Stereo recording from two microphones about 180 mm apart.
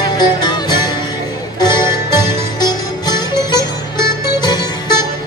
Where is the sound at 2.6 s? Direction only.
25° left (ahead or behind).